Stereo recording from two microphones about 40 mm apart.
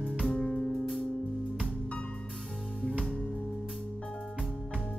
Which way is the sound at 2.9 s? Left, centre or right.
Left.